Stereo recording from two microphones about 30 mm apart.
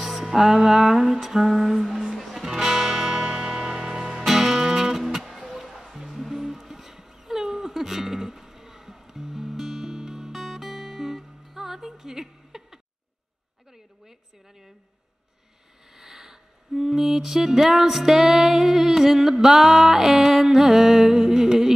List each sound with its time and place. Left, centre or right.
0.0 s music: centre
5.5 s music: centre
16.0 s music: centre